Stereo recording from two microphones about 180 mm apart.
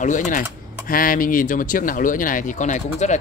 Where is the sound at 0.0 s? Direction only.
45° left (ahead or behind).